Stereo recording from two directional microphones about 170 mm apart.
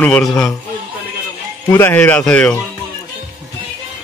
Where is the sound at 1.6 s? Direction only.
15° left (ahead or behind).